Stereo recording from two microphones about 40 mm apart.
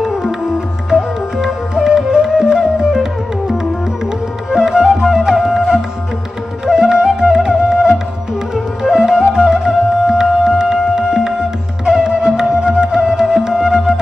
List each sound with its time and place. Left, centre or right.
0.9 s music: centre